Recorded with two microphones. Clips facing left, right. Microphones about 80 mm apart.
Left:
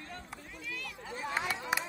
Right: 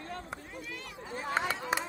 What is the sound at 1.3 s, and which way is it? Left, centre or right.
Run, right.